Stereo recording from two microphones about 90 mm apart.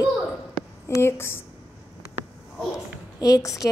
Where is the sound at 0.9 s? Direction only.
30° left (ahead or behind).